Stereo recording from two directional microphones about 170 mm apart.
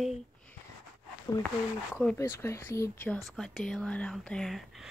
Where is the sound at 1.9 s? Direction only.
5° left (ahead or behind).